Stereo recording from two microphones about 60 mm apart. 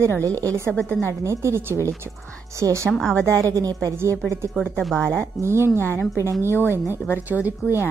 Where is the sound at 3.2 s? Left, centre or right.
Right.